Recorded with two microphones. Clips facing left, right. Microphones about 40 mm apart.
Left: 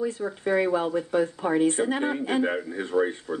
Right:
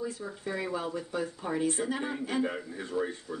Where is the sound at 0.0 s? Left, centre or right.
Left.